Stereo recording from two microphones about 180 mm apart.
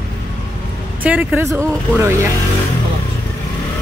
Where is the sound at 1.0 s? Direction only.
10° right (ahead or behind).